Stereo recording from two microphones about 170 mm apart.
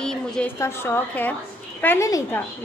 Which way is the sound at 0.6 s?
15° left (ahead or behind).